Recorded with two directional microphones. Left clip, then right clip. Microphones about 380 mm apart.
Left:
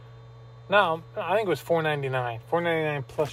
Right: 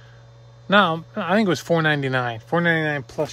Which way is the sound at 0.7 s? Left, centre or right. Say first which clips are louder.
Right 4 dB; right.